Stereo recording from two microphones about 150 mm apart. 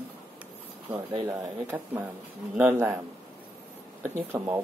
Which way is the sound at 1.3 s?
15° right (ahead or behind).